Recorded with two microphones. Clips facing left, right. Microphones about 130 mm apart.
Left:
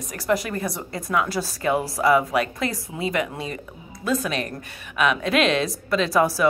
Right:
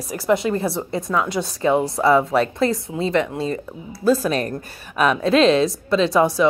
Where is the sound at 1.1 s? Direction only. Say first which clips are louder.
Even; 20° right (ahead or behind).